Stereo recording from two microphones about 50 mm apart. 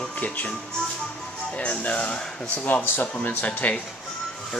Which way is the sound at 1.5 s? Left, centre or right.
Left.